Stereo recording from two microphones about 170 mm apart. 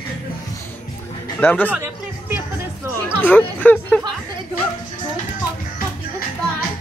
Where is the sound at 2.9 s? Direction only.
10° left (ahead or behind).